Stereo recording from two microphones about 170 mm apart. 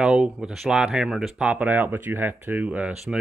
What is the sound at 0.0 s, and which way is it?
Speech, 5° right (ahead or behind).